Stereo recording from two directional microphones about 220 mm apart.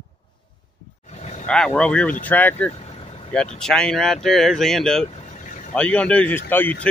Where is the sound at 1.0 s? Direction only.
30° left (ahead or behind).